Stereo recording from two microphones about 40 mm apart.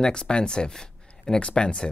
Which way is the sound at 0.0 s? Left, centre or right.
Left.